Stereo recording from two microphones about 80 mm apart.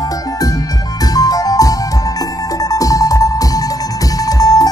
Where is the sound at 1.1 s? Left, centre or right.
Left.